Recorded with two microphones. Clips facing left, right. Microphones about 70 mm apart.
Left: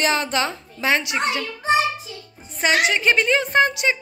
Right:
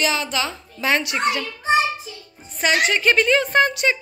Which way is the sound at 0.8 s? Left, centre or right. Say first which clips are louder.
Right 1 dB; left.